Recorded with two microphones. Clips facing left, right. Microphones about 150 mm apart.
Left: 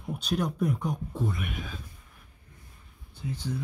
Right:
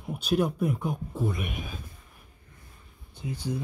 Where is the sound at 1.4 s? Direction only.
15° right (ahead or behind).